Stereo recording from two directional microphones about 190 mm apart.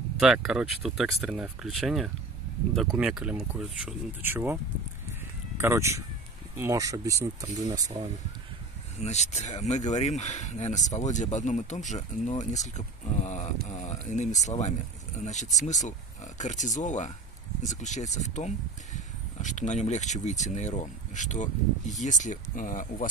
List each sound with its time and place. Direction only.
0.2 s speech: centre (ahead or behind)
5.6 s speech: 15° right (ahead or behind)
9.0 s speech: 35° left (ahead or behind)